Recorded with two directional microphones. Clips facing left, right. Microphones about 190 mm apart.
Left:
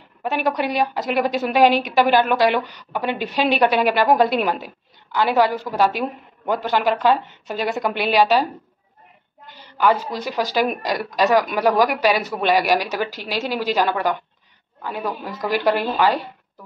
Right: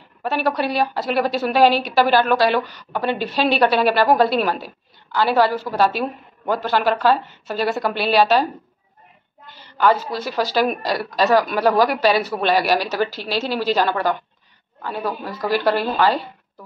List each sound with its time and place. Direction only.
0.2 s a woman's voice: 15° left (ahead or behind)
9.5 s a woman's voice: 15° left (ahead or behind)